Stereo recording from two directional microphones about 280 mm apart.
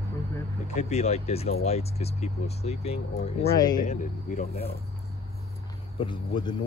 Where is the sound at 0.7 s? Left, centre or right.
Left.